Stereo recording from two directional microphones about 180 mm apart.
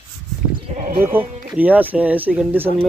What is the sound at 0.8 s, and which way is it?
Sheep, 50° right (ahead or behind).